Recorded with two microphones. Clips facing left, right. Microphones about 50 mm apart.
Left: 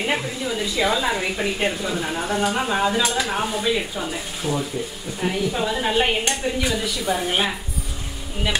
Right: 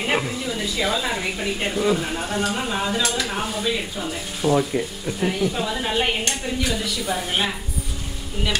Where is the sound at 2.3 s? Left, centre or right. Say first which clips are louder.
Left 3 dB; centre.